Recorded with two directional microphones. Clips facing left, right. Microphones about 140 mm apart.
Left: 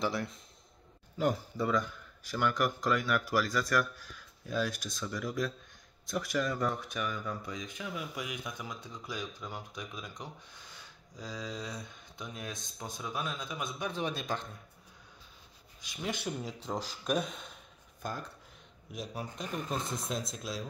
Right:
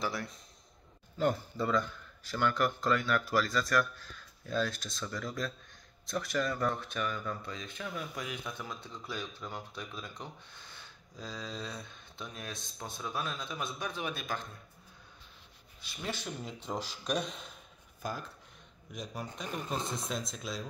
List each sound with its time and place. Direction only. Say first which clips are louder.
0.0 s a man's voice: left 3 dB; 20° left (ahead or behind)
13.9 s speech: left 3 dB; 30° left (ahead or behind)
15.8 s speech: left 3 dB; 15° left (ahead or behind)